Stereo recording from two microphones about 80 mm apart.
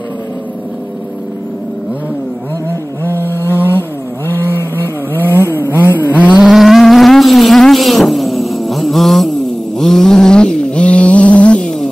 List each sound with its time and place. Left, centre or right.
3.2 s vehicle: left
5.1 s vehicle: left
6.3 s vehicle: centre
9.8 s a sound: centre